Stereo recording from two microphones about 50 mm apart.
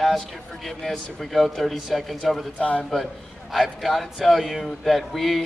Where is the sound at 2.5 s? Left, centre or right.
Left.